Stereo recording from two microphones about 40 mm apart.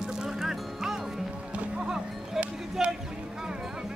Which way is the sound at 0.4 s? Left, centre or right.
Centre.